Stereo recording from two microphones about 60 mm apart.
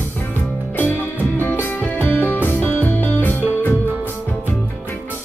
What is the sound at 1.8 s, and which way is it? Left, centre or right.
Music, left.